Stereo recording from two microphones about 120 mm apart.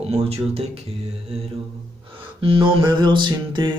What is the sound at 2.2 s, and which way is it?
Music, 45° right (ahead or behind).